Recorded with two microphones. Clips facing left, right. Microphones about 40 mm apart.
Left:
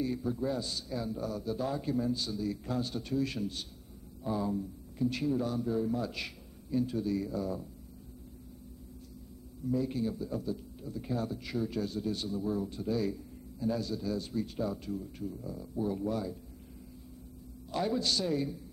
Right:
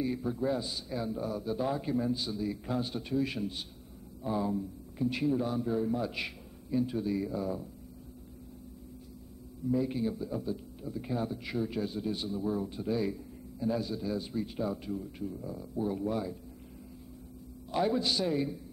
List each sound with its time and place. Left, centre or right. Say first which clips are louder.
0.0 s a man's voice: right 1 dB; centre
9.7 s a man's voice: right 1 dB; centre
17.6 s a man's voice: right 2 dB; centre